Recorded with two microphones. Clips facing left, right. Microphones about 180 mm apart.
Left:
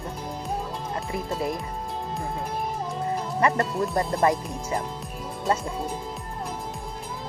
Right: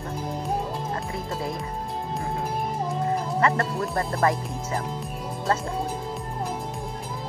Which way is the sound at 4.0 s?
20° left (ahead or behind).